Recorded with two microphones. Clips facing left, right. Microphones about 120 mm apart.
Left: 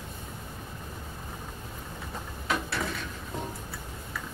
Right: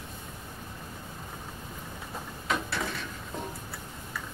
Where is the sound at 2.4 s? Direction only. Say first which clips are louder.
Left 1 dB; centre (ahead or behind).